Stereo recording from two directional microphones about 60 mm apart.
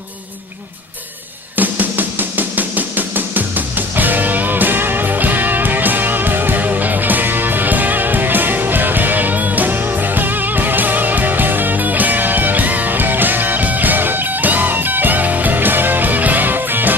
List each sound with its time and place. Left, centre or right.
1.6 s music: right